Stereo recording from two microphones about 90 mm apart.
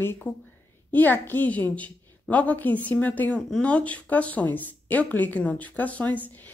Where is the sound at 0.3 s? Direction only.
20° left (ahead or behind).